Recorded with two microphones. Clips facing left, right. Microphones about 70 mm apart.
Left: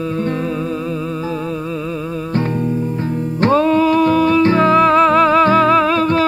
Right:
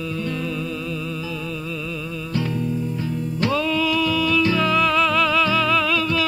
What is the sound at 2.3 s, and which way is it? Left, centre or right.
Music, left.